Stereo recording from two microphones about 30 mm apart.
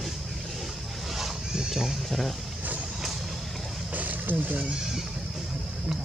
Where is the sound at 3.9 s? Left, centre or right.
Right.